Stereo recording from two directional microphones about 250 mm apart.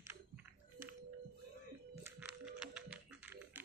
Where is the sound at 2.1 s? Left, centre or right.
Centre.